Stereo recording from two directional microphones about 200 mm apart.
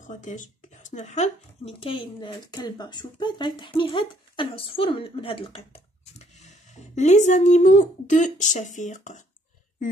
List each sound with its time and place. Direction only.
0.0 s speech: 35° left (ahead or behind)